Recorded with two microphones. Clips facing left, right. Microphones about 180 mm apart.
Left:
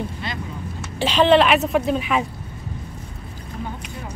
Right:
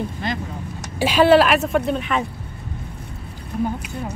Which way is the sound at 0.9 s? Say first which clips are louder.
Right 2 dB; 10° right (ahead or behind).